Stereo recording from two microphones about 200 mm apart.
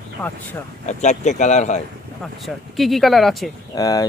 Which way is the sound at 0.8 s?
35° left (ahead or behind).